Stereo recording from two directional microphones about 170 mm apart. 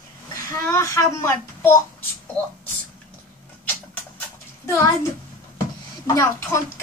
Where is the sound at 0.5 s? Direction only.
15° left (ahead or behind).